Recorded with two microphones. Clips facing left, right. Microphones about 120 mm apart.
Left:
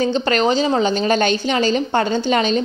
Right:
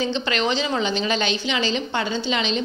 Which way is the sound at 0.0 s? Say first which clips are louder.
Left 6 dB; 45° left (ahead or behind).